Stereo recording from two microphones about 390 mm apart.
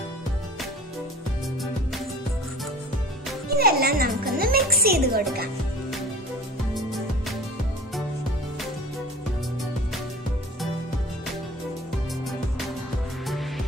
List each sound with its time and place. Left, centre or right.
3.4 s music: right
6.7 s music: centre
12.3 s music: centre